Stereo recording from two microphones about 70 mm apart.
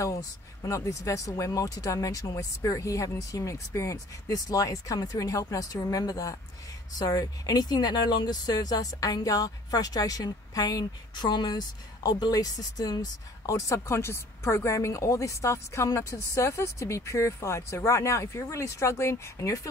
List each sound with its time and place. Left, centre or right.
0.0 s a woman's voice: left
7.1 s a woman's voice: left
7.5 s a woman's voice: left